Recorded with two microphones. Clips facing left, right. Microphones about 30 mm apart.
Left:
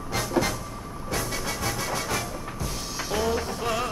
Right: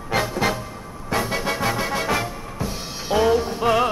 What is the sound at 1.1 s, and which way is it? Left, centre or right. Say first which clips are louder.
Drum kit: right 7 dB; right.